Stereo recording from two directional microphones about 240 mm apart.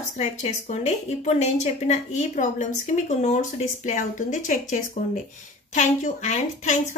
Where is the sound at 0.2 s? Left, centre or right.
Left.